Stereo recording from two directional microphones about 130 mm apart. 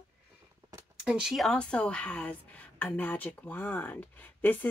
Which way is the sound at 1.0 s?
5° right (ahead or behind).